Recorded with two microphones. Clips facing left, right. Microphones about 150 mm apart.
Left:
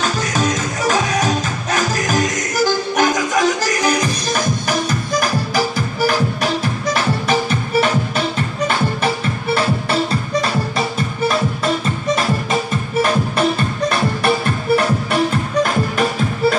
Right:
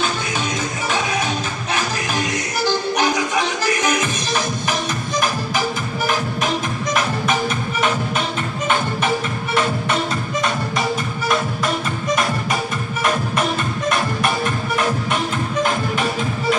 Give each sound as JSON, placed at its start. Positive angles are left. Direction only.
{"t": 0.0, "sound": "music", "side_deg": 40}